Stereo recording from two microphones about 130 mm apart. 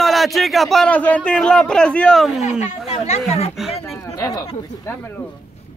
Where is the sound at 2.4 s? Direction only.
60° left (ahead or behind).